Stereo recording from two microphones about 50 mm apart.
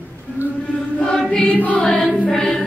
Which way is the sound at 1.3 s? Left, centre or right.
Left.